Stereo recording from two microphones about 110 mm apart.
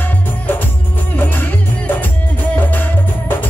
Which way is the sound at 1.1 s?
15° left (ahead or behind).